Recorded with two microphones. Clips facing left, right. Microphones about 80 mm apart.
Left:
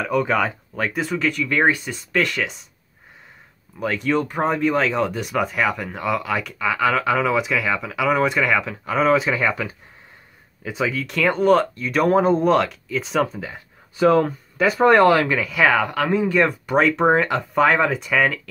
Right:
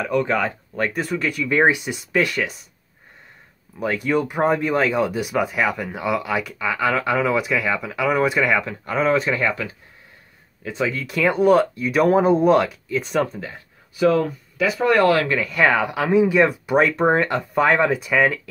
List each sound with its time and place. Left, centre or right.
0.2 s speech: centre
1.4 s speech: centre
2.2 s speech: centre
3.7 s speech: centre
13.9 s speech: left
15.0 s speech: left
15.4 s speech: centre